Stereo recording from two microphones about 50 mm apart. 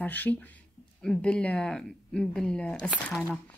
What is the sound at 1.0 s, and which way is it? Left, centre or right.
Speech, left.